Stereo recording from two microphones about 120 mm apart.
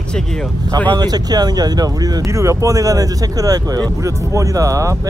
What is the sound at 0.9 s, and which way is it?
Speech, 35° right (ahead or behind).